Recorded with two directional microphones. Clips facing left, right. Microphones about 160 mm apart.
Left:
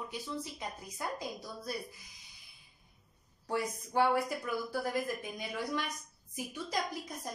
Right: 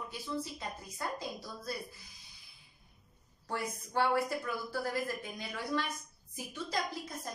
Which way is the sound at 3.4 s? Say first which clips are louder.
Left 3 dB; 15° left (ahead or behind).